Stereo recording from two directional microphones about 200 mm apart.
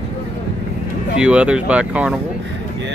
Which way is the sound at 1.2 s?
5° right (ahead or behind).